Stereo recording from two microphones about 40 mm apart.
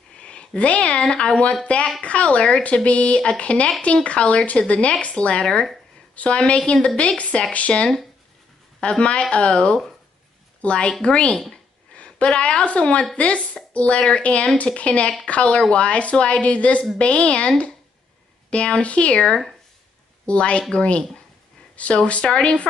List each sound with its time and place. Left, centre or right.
0.2 s speech: left
5.4 s speech: centre
6.1 s a woman's voice: left
11.3 s speech: centre
11.9 s a woman's voice: left
18.5 s speech: left
20.2 s speech: left